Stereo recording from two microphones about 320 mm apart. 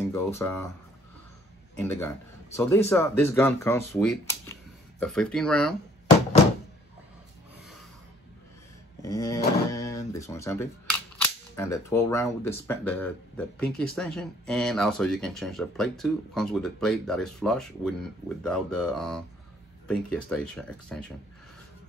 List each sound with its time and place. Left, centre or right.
0.1 s speech: centre
1.8 s speech: centre
9.0 s speech: centre